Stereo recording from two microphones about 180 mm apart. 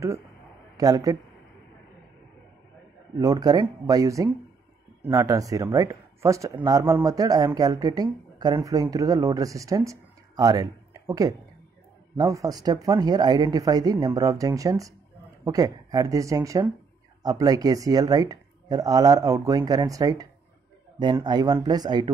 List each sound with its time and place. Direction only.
0.7 s speech: 20° right (ahead or behind)
3.2 s speech: 20° right (ahead or behind)